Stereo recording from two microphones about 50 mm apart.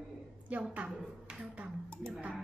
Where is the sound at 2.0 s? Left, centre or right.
Centre.